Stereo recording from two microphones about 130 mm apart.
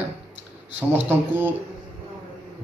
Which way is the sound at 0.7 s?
15° right (ahead or behind).